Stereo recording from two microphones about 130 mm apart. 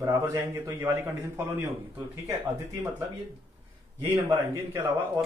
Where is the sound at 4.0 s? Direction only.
25° right (ahead or behind).